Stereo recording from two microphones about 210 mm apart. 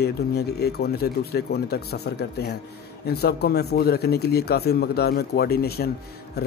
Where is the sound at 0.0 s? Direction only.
50° left (ahead or behind).